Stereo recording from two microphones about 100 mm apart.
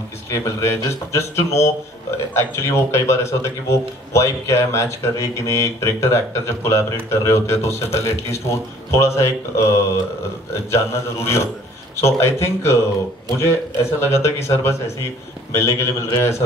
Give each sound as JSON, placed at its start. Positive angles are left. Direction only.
{"t": 0.3, "sound": "a man's voice", "side_deg": 30}